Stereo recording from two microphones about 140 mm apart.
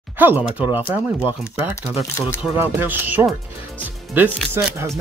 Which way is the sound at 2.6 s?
15° right (ahead or behind).